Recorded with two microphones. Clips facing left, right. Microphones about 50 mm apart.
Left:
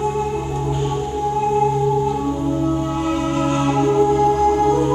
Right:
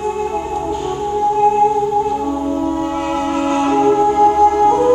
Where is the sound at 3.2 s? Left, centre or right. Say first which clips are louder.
Right 2 dB; right.